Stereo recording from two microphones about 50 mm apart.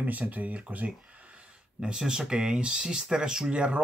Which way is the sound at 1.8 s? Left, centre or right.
Centre.